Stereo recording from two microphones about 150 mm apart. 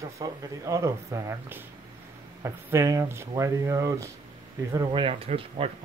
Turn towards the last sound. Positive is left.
turn(degrees=-40)  # may be behind; listen again after turning